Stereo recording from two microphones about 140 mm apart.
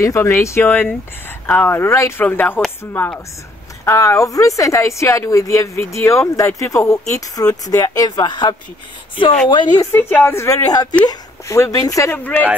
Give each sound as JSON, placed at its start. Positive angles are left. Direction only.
{"t": 0.0, "sound": "a woman's voice", "side_deg": 20}
{"t": 9.8, "sound": "a woman's voice", "side_deg": 15}